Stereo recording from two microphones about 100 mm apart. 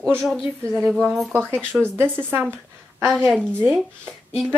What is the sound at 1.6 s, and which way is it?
Speech, 10° left (ahead or behind).